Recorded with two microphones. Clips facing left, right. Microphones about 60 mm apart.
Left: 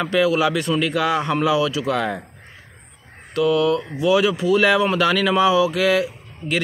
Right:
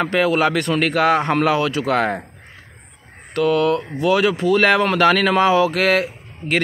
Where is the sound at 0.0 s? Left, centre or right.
Right.